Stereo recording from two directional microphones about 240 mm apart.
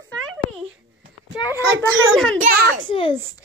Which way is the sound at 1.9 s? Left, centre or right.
Right.